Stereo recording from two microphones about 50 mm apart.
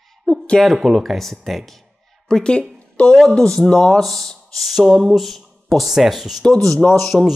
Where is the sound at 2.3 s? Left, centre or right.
Centre.